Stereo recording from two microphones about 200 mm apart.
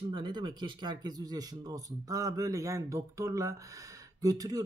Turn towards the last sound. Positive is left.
turn(degrees=-20)  # may be behind; listen again after turning